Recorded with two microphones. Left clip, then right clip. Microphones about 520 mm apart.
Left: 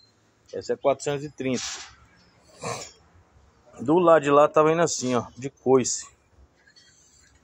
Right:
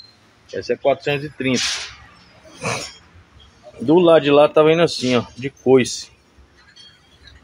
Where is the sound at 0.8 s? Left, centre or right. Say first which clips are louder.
Right 5 dB; left.